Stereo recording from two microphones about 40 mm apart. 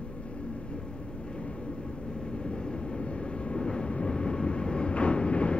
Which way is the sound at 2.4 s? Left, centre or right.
Left.